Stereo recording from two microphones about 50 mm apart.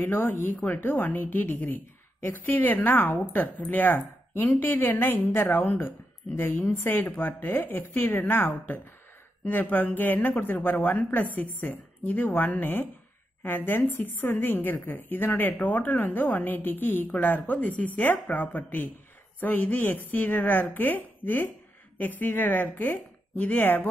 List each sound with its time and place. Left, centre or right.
0.0 s a woman's voice: left